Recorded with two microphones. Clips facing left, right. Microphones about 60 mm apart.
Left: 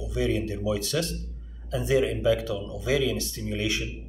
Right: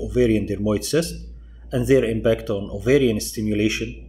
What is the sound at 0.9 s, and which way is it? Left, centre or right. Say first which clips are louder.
Speech: right 10 dB; right.